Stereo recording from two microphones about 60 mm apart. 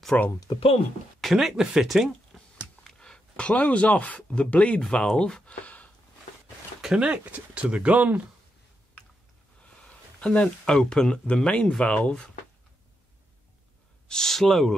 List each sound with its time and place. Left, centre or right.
0.1 s speech: left
1.2 s speech: centre
1.6 s speech: centre
2.3 s a sound: centre
4.3 s speech: centre
7.0 s speech: right
10.2 s speech: centre
14.0 s speech: centre